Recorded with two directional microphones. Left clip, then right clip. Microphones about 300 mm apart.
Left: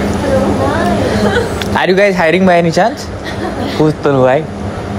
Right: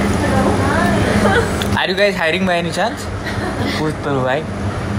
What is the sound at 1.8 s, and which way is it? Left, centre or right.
Speech, left.